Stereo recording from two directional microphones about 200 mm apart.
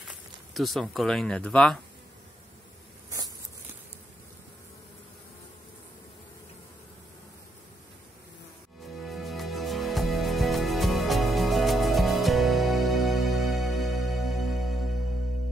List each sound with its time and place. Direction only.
0.1 s speech: centre (ahead or behind)
9.0 s music: centre (ahead or behind)